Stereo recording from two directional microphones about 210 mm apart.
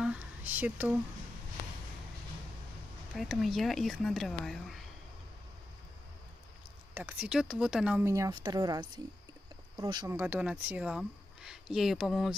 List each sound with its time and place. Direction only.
0.0 s a sound: 5° right (ahead or behind)
3.2 s speech: centre (ahead or behind)
6.9 s speech: 10° right (ahead or behind)